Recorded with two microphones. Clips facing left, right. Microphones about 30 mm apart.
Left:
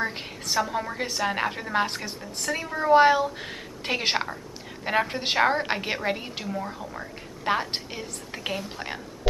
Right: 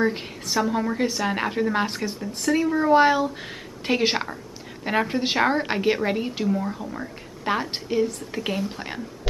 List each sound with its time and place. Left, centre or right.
0.0 s a woman's voice: centre